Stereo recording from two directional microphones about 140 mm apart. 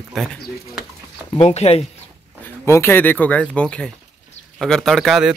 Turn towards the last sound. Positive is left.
turn(degrees=0)  # may be behind; listen again after turning